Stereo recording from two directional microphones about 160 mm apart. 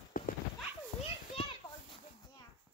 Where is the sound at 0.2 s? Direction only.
60° left (ahead or behind).